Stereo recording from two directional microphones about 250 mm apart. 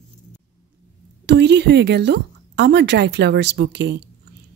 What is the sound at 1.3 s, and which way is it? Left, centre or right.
A woman's voice, right.